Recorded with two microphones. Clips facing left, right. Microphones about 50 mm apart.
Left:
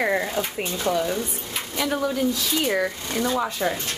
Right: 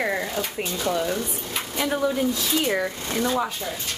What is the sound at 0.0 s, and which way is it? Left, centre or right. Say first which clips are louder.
A woman's voice: left 2 dB; centre.